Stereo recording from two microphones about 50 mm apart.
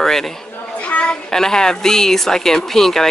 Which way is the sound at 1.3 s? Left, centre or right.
Centre.